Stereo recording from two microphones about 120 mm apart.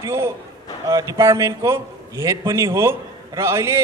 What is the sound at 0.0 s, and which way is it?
A man's voice, 20° right (ahead or behind).